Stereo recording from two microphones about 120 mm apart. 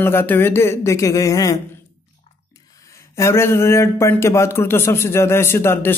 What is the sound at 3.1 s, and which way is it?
A man's voice, 20° left (ahead or behind).